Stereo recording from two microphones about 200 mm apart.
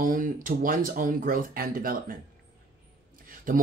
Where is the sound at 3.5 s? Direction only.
45° right (ahead or behind).